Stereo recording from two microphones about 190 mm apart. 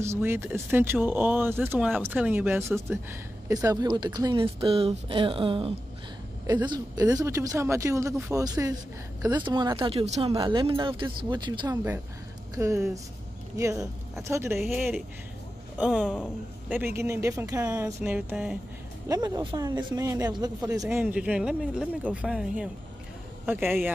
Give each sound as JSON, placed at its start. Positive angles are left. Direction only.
{"t": 0.0, "sound": "speech", "side_deg": -15}
{"t": 14.6, "sound": "speech", "side_deg": 0}
{"t": 19.0, "sound": "speech", "side_deg": -20}